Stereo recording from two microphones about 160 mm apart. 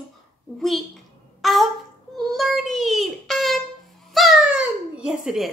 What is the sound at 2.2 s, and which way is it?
A woman's voice, centre (ahead or behind).